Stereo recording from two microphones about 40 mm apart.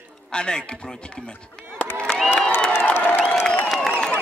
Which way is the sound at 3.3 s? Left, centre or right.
Left.